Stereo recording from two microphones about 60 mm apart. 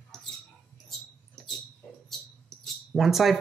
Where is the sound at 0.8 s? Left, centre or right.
Centre.